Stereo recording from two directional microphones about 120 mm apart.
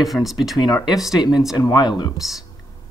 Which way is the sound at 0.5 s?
30° left (ahead or behind).